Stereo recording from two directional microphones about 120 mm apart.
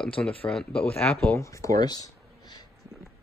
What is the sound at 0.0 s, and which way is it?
Speech, 10° left (ahead or behind).